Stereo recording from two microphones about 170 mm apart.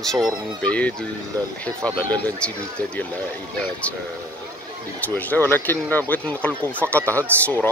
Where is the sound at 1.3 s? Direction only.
20° right (ahead or behind).